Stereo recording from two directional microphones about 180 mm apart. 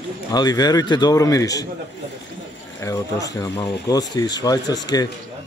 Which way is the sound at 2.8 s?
20° left (ahead or behind).